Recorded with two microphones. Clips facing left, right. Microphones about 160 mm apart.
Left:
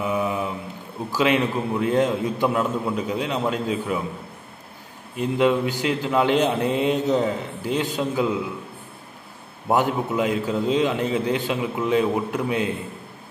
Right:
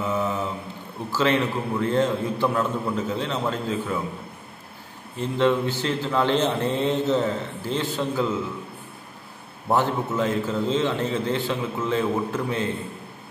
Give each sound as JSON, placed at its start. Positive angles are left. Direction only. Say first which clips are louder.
{"t": 0.0, "sound": "mantra", "louder": "left 1 dB", "side_deg": 15}
{"t": 1.1, "sound": "speech", "louder": "left 1 dB", "side_deg": 15}
{"t": 5.1, "sound": "speech", "louder": "left 2 dB", "side_deg": 15}
{"t": 9.7, "sound": "speech", "louder": "left 1 dB", "side_deg": 15}